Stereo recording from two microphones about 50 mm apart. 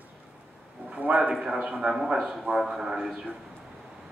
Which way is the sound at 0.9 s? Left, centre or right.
Right.